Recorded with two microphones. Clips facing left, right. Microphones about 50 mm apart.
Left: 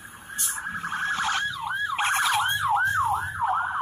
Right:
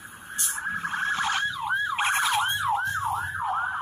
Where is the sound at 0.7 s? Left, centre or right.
Centre.